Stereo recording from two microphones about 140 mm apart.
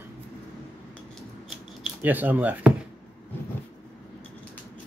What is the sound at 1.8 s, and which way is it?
Speech, 10° right (ahead or behind).